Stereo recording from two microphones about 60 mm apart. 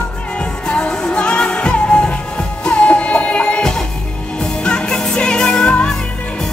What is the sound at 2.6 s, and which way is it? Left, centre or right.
Music, centre.